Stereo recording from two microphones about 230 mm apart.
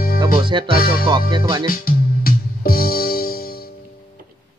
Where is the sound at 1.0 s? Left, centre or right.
Right.